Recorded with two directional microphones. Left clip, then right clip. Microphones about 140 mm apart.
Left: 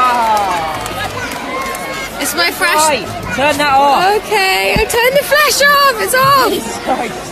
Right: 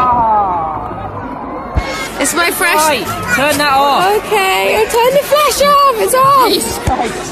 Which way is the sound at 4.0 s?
25° left (ahead or behind).